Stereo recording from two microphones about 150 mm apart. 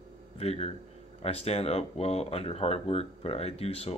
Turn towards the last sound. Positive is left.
turn(degrees=40)  # may be behind; listen again after turning